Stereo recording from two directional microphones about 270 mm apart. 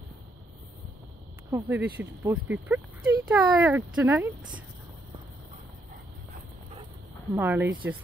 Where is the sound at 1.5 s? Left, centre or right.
Centre.